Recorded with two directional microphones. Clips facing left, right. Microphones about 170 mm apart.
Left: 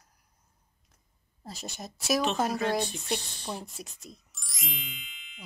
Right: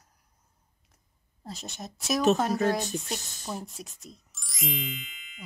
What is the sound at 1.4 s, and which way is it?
Speech, centre (ahead or behind).